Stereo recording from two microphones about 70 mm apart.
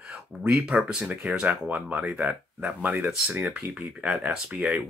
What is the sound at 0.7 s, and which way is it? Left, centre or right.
Speech, centre.